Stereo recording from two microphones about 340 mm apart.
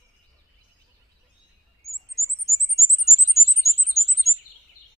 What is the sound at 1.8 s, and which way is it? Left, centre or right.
Chirp, centre.